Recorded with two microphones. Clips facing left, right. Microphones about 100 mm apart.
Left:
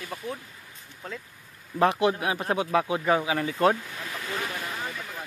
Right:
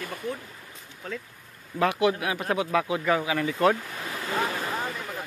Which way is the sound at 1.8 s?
30° left (ahead or behind).